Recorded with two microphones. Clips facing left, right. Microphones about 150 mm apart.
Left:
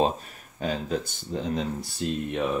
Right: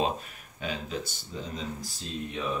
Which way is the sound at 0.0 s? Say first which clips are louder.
Left 4 dB; 35° left (ahead or behind).